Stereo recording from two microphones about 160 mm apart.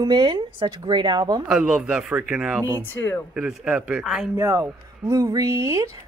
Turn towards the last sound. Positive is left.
turn(degrees=-20)  # may be behind; listen again after turning